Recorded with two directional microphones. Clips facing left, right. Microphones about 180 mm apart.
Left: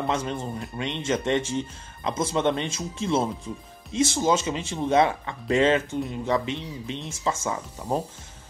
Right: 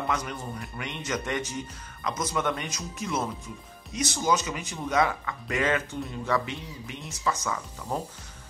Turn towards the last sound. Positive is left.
turn(degrees=25)  # may be behind; listen again after turning